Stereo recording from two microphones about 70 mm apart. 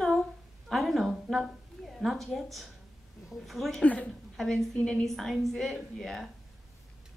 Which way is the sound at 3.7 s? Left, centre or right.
Left.